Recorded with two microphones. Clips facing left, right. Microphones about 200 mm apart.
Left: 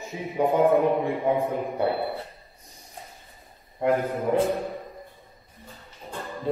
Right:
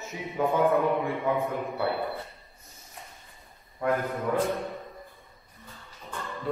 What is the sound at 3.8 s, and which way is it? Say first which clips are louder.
Speech: left 4 dB; 25° left (ahead or behind).